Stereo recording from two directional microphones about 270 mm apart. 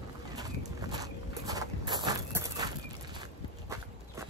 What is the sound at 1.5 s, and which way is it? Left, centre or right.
Walk, centre.